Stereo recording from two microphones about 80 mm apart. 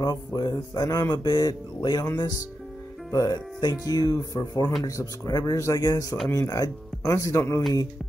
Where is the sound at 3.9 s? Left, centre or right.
Left.